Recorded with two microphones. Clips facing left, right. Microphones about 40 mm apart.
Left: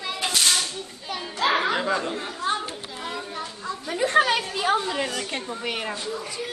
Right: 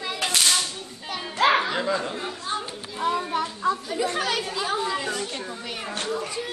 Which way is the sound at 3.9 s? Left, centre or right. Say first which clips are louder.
Left 5 dB; left.